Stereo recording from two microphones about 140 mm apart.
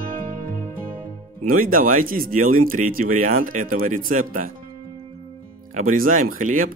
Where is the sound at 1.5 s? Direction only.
80° right.